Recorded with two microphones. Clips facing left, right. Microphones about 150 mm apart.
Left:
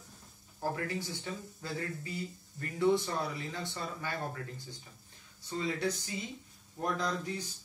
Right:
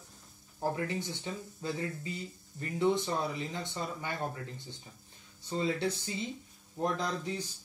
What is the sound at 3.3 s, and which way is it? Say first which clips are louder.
Speech: right 2 dB; 20° right (ahead or behind).